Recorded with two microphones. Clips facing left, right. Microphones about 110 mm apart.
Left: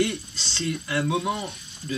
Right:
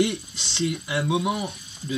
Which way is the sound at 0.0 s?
20° right (ahead or behind).